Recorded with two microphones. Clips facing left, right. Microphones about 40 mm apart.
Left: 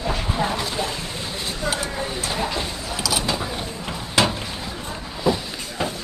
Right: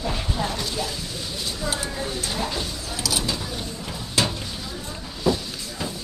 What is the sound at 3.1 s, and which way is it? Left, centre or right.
Mechanisms, left.